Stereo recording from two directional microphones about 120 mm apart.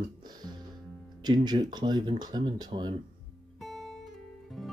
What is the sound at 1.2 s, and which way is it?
Speech, 35° right (ahead or behind).